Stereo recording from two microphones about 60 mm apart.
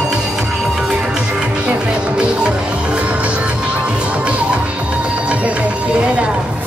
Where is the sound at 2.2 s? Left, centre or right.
Centre.